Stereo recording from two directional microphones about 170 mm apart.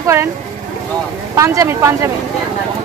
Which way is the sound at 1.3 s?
20° right (ahead or behind).